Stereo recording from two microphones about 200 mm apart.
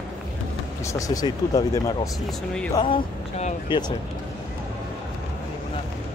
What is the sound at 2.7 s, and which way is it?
Speech, 25° left (ahead or behind).